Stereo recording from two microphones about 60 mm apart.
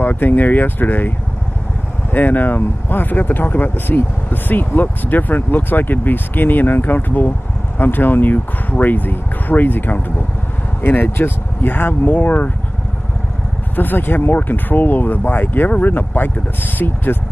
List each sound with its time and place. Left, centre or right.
0.0 s speech: left
2.1 s speech: left
13.7 s speech: left